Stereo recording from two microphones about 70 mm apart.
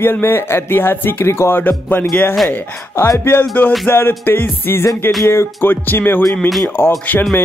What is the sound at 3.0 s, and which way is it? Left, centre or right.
Speech, left.